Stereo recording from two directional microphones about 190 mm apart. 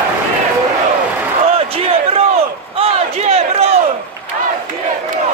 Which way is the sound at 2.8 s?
30° right (ahead or behind).